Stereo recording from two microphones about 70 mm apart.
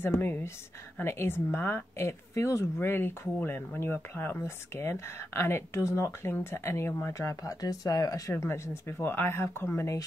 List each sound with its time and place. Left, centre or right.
0.0 s a woman's voice: left
8.5 s a woman's voice: left